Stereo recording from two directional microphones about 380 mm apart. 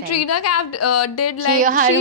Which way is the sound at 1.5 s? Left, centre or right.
Right.